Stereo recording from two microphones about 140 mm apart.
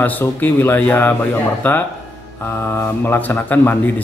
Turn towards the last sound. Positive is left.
turn(degrees=15)  # may be behind; listen again after turning